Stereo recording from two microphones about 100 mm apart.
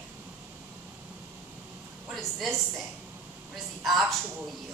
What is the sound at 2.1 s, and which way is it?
Speech, centre (ahead or behind).